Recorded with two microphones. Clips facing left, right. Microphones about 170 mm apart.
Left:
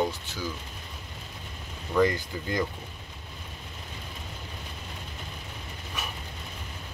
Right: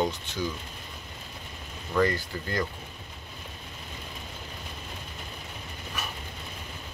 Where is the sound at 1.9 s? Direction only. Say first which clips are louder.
Left 1 dB; 15° left (ahead or behind).